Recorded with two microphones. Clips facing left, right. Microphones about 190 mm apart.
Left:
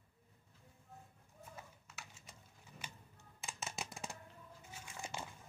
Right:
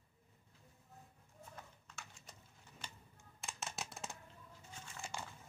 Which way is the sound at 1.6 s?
5° left (ahead or behind).